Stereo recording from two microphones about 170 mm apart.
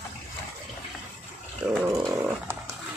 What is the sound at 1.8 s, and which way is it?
Dog, 15° right (ahead or behind).